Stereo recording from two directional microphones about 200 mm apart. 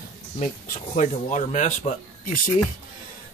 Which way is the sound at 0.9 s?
35° left (ahead or behind).